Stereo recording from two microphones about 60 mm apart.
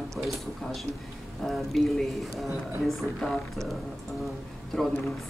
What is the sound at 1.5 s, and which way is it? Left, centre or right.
A woman's voice, centre.